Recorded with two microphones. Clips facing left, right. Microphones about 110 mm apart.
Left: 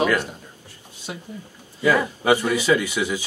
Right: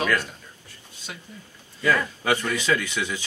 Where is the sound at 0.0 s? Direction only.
15° left (ahead or behind).